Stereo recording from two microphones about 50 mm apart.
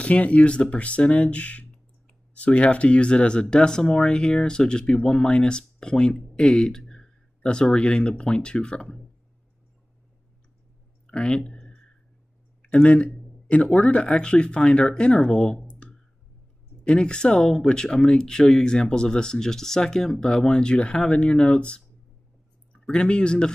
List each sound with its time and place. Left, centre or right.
0.0 s speech: left
11.1 s a sound: centre
13.7 s speech: left